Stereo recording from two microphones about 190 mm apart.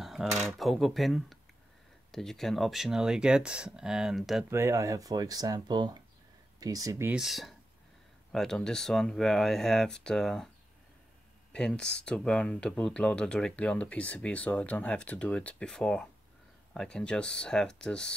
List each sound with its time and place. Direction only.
0.0 s speech: centre (ahead or behind)
4.5 s speech: 15° right (ahead or behind)
7.2 s speech: centre (ahead or behind)
11.5 s speech: 5° left (ahead or behind)